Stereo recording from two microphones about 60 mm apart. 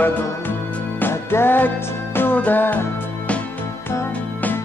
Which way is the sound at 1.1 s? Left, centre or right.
Left.